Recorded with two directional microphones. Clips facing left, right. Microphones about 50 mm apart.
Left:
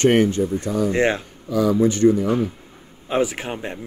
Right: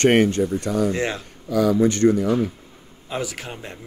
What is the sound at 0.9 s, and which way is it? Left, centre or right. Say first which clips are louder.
Speech: left 6 dB; left.